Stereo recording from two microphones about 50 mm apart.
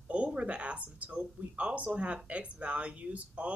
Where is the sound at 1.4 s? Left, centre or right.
Right.